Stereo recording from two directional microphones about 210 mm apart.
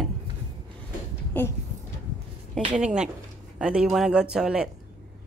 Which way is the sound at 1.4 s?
10° left (ahead or behind).